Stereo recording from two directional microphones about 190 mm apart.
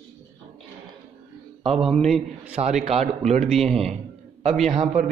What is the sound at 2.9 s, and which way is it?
Speech, 35° right (ahead or behind).